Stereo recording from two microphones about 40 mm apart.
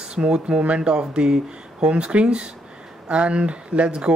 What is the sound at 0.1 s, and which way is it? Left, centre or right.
Speech, right.